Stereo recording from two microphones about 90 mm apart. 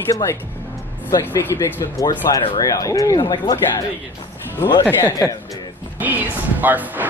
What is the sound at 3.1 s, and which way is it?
Speech, 55° left (ahead or behind).